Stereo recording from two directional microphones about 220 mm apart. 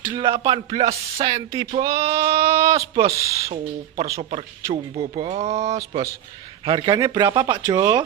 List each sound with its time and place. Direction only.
0.1 s music: 25° right (ahead or behind)
7.6 s speech: 20° right (ahead or behind)